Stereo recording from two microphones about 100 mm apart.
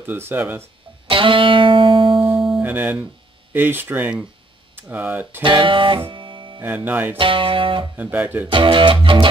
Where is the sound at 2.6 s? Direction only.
20° right (ahead or behind).